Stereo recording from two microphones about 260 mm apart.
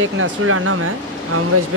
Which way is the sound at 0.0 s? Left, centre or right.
Right.